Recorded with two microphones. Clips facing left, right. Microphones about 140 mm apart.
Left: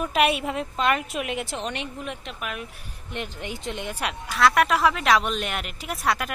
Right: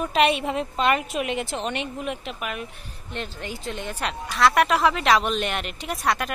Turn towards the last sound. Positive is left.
turn(degrees=0)  # may be behind; listen again after turning